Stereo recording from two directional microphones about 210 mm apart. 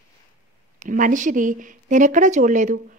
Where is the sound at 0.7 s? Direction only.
40° right (ahead or behind).